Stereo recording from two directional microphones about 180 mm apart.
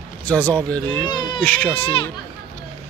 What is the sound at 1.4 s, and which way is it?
Speech, 10° left (ahead or behind).